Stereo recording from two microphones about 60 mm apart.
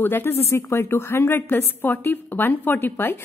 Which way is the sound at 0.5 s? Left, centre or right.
Left.